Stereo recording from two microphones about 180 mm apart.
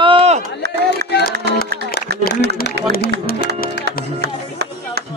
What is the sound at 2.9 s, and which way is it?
Speech, 65° right (ahead or behind).